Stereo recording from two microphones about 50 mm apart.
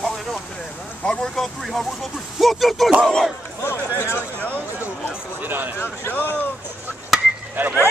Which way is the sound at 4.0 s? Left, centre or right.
Left.